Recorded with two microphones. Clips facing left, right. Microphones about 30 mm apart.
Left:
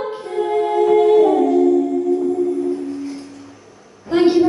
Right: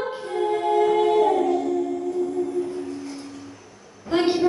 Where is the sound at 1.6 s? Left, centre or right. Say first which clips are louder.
Left 9 dB; centre.